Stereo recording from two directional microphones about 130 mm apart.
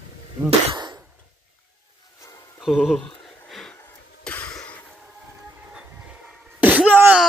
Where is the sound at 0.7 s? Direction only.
35° right (ahead or behind).